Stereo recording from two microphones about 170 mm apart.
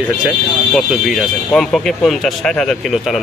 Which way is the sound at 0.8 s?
Centre (ahead or behind).